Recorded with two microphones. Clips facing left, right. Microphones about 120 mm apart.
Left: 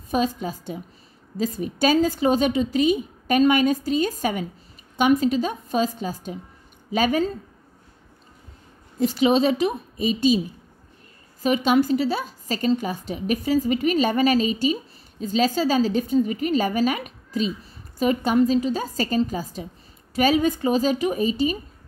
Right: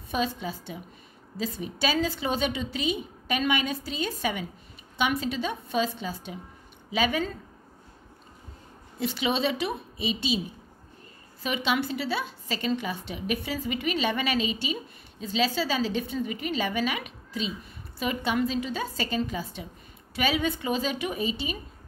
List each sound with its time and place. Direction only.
0.1 s a woman's voice: 45° left (ahead or behind)
9.0 s a woman's voice: 40° left (ahead or behind)
11.4 s a woman's voice: 40° left (ahead or behind)